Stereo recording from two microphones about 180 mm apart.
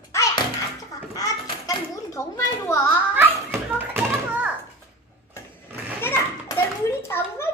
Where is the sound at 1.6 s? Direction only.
15° left (ahead or behind).